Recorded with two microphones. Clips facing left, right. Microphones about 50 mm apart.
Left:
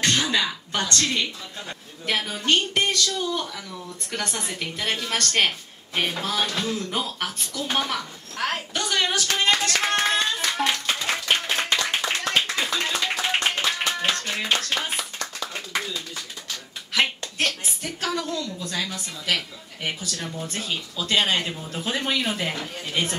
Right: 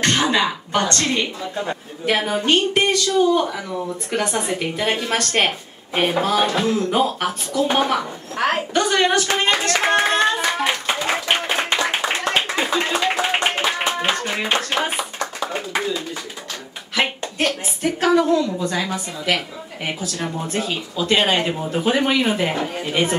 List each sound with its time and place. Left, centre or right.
0.0 s a woman's voice: right
10.2 s clapping: right
17.4 s a woman's voice: centre